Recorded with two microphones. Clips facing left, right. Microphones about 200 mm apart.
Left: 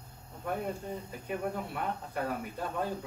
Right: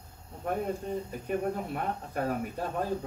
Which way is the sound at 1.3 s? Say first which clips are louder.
Right 3 dB; 40° right (ahead or behind).